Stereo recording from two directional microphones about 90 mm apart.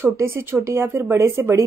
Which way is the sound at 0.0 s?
30° right (ahead or behind).